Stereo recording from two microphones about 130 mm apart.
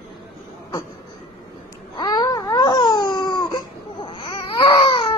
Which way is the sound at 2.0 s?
30° left (ahead or behind).